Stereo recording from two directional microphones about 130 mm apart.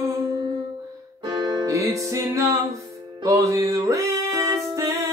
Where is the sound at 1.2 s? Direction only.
35° right (ahead or behind).